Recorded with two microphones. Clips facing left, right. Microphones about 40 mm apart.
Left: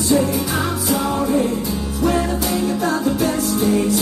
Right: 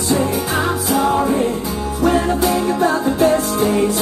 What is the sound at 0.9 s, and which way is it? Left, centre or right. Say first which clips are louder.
Music: right 3 dB; right.